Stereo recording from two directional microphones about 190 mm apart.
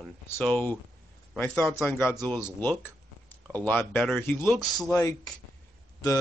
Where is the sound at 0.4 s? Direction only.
5° left (ahead or behind).